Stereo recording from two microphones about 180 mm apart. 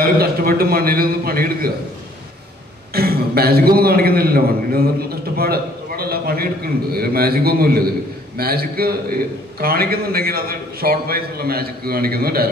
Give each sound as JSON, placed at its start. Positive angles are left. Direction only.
{"t": 0.0, "sound": "a man's voice", "side_deg": -55}
{"t": 2.9, "sound": "a man's voice", "side_deg": -60}